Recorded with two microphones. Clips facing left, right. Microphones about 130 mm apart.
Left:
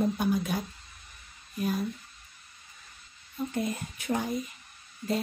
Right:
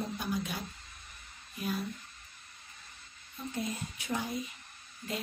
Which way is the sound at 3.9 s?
50° left (ahead or behind).